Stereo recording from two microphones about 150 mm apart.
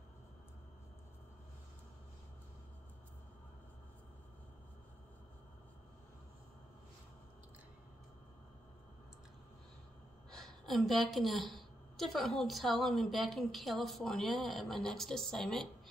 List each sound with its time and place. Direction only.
10.3 s a woman's voice: centre (ahead or behind)